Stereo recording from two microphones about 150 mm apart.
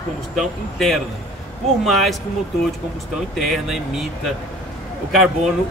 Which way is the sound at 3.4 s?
Centre (ahead or behind).